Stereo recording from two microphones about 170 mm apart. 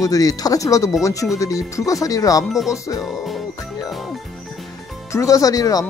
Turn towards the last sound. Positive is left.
turn(degrees=20)  # may be behind; listen again after turning